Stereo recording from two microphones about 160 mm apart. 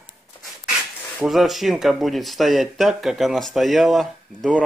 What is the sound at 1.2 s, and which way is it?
Speech, centre (ahead or behind).